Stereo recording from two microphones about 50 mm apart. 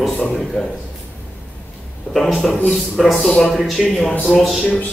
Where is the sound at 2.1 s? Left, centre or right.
Centre.